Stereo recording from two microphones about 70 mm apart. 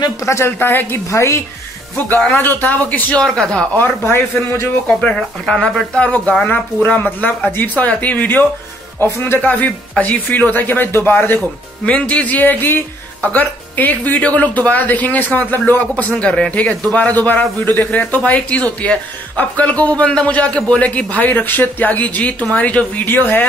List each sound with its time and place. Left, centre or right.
0.0 s a woman's voice: left
1.1 s speech: left
2.3 s speech: left
3.2 s speech: centre
3.7 s a woman's voice: left
5.1 s speech: centre; by 11.4 s left
11.8 s speech: centre